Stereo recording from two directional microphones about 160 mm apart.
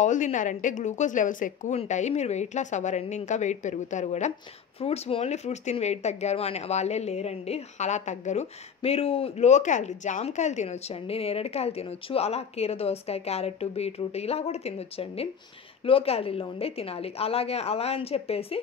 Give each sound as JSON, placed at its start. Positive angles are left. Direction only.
{"t": 0.0, "sound": "a woman's voice", "side_deg": 50}